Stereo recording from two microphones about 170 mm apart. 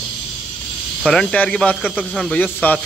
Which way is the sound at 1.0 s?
5° left (ahead or behind).